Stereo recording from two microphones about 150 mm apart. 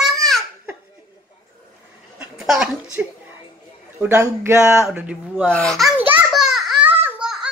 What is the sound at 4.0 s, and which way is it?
Speech, 15° right (ahead or behind).